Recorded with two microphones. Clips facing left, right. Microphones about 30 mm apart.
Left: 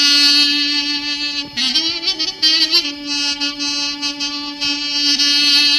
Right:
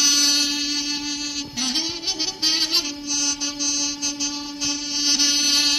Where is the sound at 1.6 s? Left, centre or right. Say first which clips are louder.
Left 8 dB; left.